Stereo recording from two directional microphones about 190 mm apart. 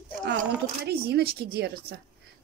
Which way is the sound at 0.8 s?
60° right (ahead or behind).